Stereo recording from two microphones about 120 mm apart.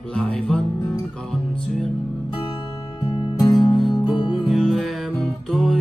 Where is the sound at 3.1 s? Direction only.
35° left (ahead or behind).